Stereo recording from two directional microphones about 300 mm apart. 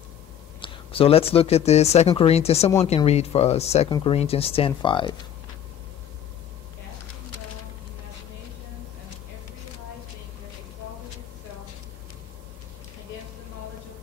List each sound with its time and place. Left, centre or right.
0.6 s speech: centre